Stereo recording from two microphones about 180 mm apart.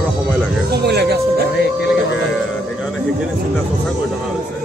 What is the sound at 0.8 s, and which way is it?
Music, 65° right (ahead or behind).